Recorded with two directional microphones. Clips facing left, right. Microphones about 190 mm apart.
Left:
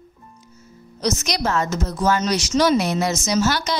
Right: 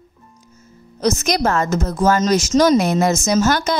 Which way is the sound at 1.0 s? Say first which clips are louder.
Right 5 dB; 50° right (ahead or behind).